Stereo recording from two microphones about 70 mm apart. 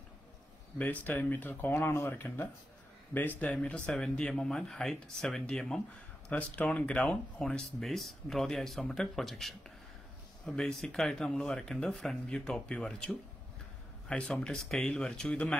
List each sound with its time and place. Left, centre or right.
0.7 s speech: left
1.7 s speech: left; by 5.8 s centre
6.2 s speech: centre
7.8 s speech: centre